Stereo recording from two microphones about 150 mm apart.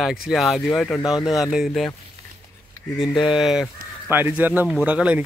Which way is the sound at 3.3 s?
Centre (ahead or behind).